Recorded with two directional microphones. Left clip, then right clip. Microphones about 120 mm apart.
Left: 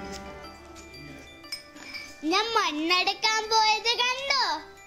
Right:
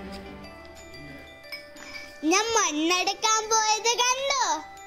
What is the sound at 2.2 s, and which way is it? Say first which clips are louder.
Speech: right 2 dB; 45° right (ahead or behind).